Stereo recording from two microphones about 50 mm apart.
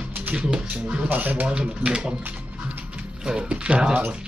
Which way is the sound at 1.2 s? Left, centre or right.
Right.